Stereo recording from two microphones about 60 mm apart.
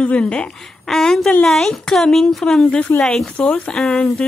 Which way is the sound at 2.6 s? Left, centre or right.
Left.